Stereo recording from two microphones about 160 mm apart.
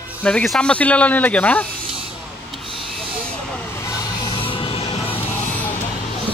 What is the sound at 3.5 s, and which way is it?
Vehicle, 20° left (ahead or behind).